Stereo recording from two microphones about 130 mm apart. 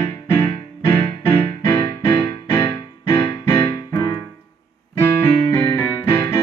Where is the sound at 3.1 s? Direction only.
20° left (ahead or behind).